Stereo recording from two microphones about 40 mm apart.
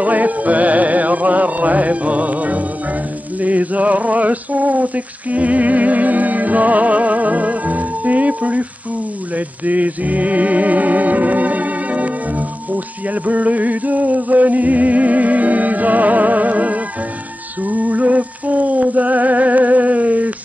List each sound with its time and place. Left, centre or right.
0.0 s chant: right
3.3 s a sound: right
9.7 s music: right